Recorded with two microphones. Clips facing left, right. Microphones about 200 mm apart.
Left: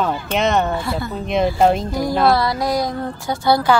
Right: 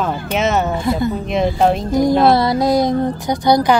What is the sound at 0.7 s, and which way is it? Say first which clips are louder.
Speech: right 6 dB; 15° right (ahead or behind).